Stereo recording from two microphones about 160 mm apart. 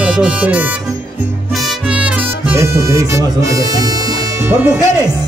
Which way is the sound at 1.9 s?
10° right (ahead or behind).